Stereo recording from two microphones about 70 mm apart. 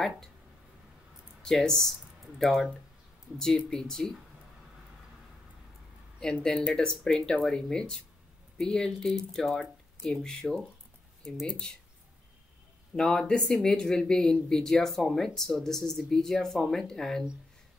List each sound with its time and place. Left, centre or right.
1.4 s speech: centre
6.2 s speech: centre
12.9 s speech: centre